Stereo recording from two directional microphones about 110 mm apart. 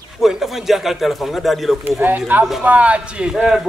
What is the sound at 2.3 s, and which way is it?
A man's voice, 15° right (ahead or behind).